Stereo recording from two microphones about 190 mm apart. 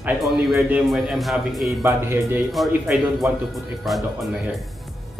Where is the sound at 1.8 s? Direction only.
15° right (ahead or behind).